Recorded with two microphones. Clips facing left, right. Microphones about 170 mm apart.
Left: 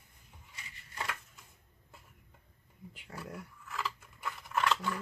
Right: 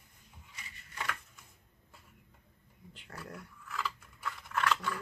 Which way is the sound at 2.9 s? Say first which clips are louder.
Left 2 dB; 10° left (ahead or behind).